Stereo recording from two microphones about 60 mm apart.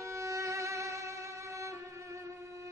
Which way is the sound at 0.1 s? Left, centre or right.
Right.